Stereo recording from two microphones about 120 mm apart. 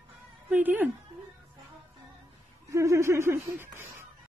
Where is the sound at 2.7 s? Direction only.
25° right (ahead or behind).